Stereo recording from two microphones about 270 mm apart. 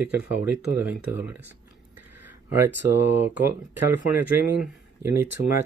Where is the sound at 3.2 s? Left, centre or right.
Centre.